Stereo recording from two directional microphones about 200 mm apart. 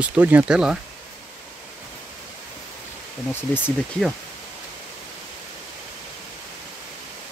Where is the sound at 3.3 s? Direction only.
10° left (ahead or behind).